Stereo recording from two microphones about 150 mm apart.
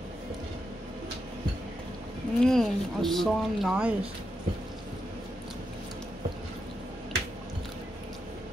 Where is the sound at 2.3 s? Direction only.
5° left (ahead or behind).